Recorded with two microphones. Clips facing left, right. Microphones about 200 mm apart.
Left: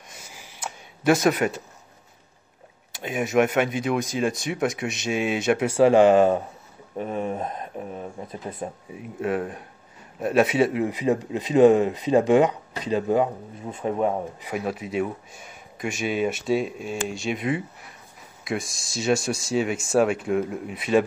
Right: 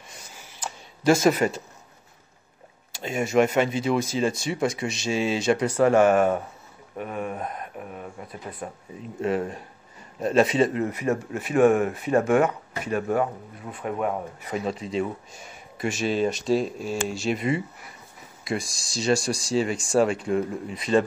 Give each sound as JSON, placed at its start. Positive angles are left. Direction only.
{"t": 0.3, "sound": "a sound", "side_deg": 10}
{"t": 3.0, "sound": "speech", "side_deg": 0}
{"t": 7.0, "sound": "speech", "side_deg": 30}
{"t": 9.2, "sound": "speech", "side_deg": 0}
{"t": 14.4, "sound": "speech", "side_deg": 10}